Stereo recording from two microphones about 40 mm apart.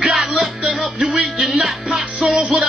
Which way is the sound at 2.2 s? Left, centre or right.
Right.